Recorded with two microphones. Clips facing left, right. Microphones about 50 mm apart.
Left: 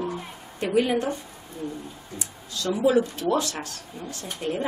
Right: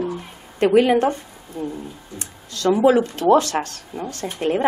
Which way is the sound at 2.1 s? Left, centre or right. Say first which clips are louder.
Left 3 dB; right.